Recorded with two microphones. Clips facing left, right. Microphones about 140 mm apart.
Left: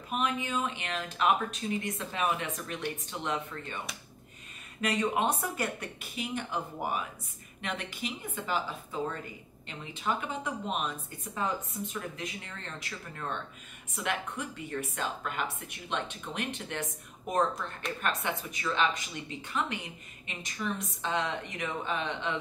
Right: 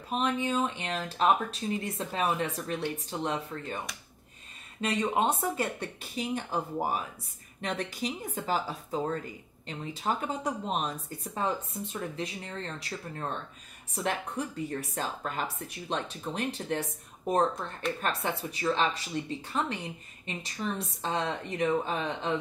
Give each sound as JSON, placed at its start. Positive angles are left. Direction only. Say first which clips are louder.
{"t": 0.1, "sound": "speech", "louder": "right 3 dB", "side_deg": -35}
{"t": 4.8, "sound": "speech", "louder": "right 1 dB", "side_deg": -25}